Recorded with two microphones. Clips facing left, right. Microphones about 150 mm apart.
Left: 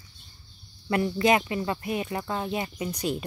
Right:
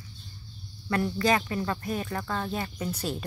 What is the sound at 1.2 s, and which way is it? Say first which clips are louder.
Speech: left 4 dB; 20° left (ahead or behind).